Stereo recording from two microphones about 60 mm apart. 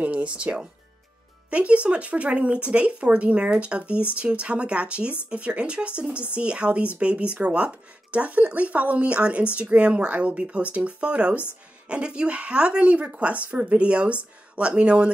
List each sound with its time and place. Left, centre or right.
0.0 s speech: right